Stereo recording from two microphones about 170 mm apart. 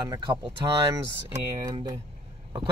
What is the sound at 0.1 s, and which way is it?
Speech, 25° right (ahead or behind).